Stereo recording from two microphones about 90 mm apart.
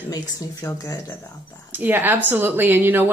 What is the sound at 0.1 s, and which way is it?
Speech, 45° left (ahead or behind).